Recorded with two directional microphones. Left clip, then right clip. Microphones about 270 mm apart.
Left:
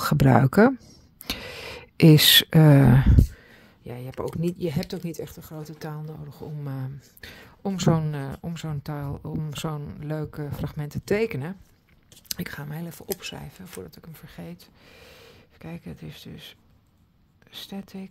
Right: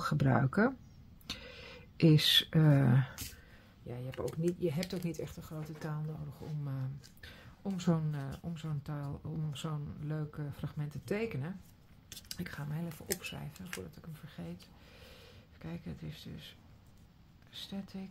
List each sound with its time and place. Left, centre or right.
0.0 s speech: left
1.2 s a sound: left
4.8 s speech: left